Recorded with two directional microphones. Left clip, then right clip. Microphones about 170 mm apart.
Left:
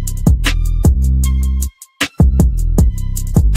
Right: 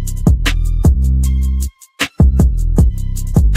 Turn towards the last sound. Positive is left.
turn(degrees=0)  # may be behind; listen again after turning